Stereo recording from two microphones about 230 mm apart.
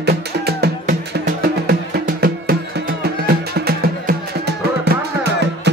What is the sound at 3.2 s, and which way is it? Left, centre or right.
Music, right.